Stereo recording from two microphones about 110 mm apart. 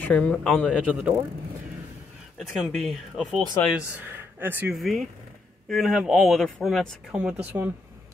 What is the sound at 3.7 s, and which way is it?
Speech, 15° right (ahead or behind).